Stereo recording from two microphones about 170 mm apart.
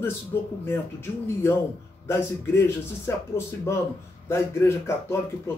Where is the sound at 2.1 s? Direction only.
15° left (ahead or behind).